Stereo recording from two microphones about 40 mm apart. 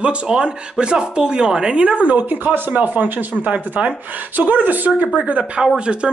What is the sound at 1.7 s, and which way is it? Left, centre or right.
Speech, right.